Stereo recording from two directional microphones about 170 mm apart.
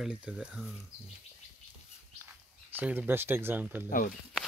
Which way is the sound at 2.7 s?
10° right (ahead or behind).